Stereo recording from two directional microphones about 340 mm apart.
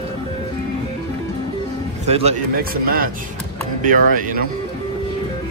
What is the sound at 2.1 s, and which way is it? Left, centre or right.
A man's voice, centre.